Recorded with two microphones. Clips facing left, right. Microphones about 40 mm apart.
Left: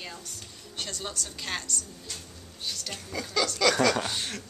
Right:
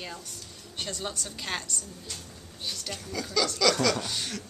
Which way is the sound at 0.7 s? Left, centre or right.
Centre.